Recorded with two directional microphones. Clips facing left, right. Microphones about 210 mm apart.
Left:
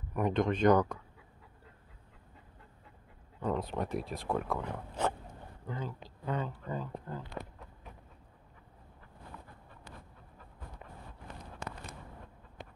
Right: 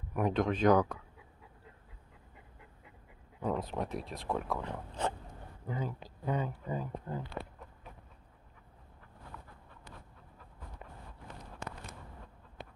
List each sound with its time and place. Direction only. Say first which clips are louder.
0.1 s speech: left 1 dB; 5° right (ahead or behind)
3.3 s speech: left 1 dB; 5° right (ahead or behind)
5.7 s speech: right 2 dB; 10° right (ahead or behind)